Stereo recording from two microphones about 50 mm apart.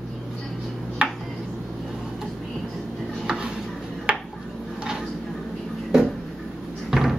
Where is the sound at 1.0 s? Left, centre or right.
Right.